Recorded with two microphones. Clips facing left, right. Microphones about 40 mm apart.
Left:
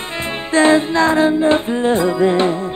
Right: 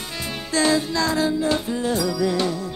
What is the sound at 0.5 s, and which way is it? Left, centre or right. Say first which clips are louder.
Music: left 8 dB; left.